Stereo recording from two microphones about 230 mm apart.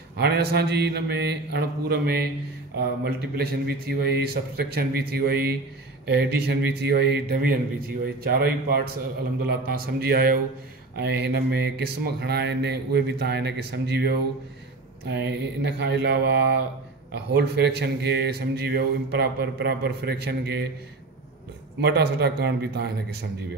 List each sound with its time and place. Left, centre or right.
0.2 s speech: right
9.9 s speech: right
21.8 s speech: right